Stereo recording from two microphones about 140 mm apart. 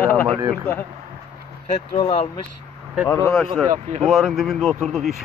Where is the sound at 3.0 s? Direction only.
15° left (ahead or behind).